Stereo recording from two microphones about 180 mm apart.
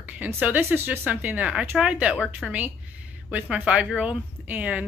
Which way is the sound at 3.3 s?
10° right (ahead or behind).